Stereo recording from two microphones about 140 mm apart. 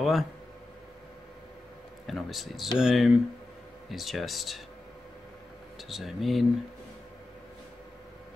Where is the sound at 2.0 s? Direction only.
Centre (ahead or behind).